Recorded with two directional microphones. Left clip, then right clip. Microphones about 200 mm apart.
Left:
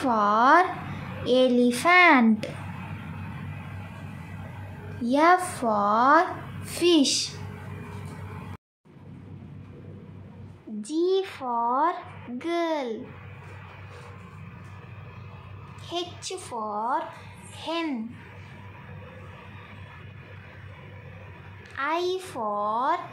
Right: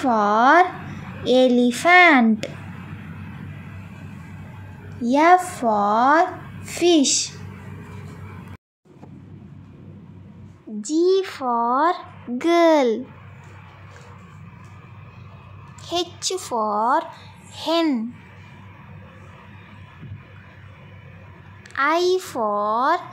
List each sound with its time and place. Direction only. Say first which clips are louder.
0.0 s a child's voice: right 4 dB; 20° right (ahead or behind)
5.0 s a child's voice: right 5 dB; 20° right (ahead or behind)
10.8 s speech: right 6 dB; 25° right (ahead or behind)
12.4 s a woman's voice: right 12 dB; 35° right (ahead or behind)
15.9 s a woman's voice: right 8 dB; 30° right (ahead or behind)
21.7 s speech: right 8 dB; 30° right (ahead or behind)